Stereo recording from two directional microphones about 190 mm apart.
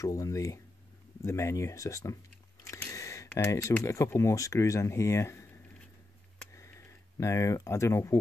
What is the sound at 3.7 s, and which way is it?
Speech, 15° left (ahead or behind).